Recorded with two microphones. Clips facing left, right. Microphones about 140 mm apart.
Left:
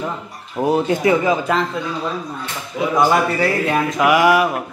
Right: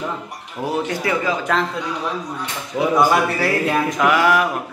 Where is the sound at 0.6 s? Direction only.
25° left (ahead or behind).